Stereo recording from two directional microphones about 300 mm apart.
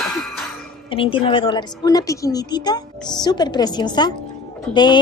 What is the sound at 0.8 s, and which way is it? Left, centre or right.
A woman's voice, centre.